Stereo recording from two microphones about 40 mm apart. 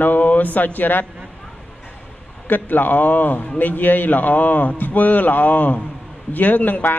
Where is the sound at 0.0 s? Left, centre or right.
Left.